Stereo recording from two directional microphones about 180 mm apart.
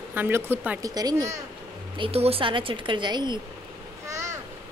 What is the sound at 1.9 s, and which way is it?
Speech, 30° right (ahead or behind).